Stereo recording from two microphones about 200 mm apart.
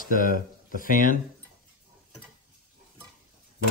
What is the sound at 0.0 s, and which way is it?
Speech, 45° left (ahead or behind).